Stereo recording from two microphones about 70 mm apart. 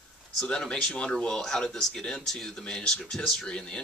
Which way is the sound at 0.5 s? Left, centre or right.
Centre.